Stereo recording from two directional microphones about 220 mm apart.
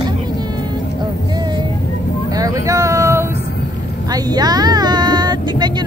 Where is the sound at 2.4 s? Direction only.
15° right (ahead or behind).